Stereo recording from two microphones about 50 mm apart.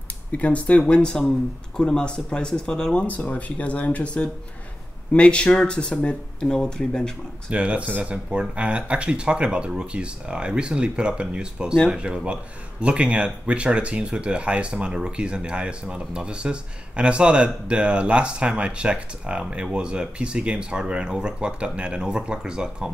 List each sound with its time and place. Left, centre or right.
0.3 s speech: left
7.5 s speech: right